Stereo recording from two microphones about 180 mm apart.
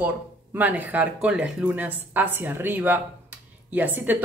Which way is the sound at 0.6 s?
10° right (ahead or behind).